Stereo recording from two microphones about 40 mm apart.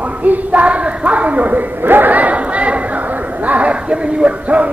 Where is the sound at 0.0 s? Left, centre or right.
Right.